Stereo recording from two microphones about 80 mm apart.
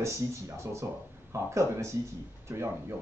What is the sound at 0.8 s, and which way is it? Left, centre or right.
Speech, right.